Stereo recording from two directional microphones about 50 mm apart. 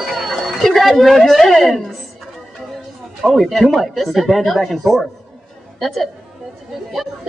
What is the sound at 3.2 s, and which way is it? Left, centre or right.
A woman's voice, centre.